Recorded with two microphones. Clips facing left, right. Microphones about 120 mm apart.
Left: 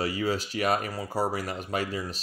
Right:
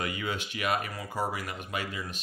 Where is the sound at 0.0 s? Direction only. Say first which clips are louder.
Left 5 dB; 35° left (ahead or behind).